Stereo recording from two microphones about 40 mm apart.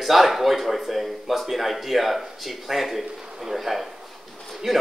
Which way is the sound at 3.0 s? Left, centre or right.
Centre.